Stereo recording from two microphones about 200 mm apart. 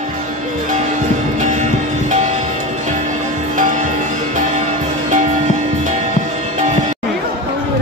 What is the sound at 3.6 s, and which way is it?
Music, 40° right (ahead or behind).